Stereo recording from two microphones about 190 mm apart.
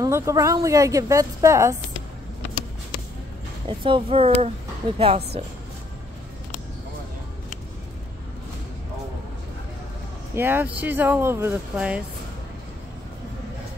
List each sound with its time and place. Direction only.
0.0 s speech: 15° right (ahead or behind)
3.6 s speech: 25° right (ahead or behind)
10.3 s speech: 10° right (ahead or behind)